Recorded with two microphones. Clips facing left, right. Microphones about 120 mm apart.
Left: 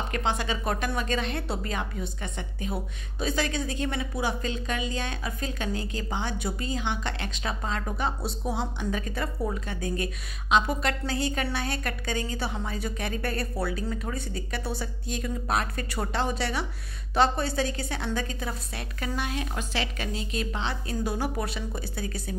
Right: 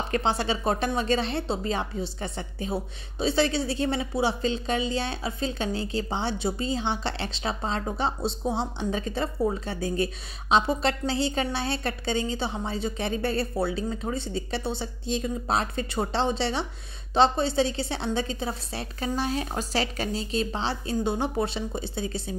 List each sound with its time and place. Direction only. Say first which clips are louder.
0.1 s speech: right 4 dB; 35° right (ahead or behind)